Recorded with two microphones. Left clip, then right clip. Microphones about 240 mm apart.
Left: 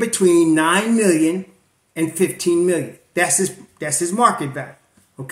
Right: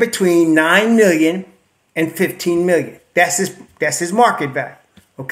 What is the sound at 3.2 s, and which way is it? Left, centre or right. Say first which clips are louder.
Speech: right 2 dB; centre.